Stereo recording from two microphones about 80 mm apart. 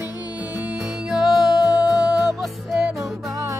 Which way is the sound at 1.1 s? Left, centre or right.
Centre.